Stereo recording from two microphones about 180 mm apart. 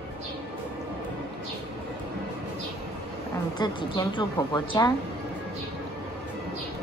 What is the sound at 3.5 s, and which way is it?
A woman's voice, 25° left (ahead or behind).